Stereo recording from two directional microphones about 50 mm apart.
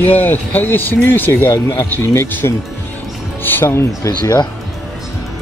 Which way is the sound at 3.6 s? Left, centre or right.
Left.